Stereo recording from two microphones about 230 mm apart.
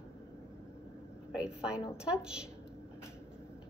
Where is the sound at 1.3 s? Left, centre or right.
Centre.